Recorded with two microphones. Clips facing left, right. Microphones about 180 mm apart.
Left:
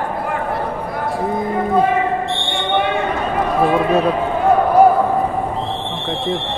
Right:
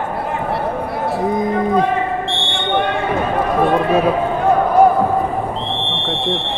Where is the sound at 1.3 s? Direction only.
15° right (ahead or behind).